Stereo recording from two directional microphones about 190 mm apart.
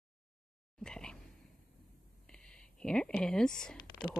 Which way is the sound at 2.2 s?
5° left (ahead or behind).